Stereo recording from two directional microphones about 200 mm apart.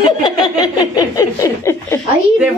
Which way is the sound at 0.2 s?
20° left (ahead or behind).